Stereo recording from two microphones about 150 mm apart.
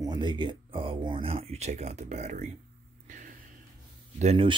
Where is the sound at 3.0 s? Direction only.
60° right (ahead or behind).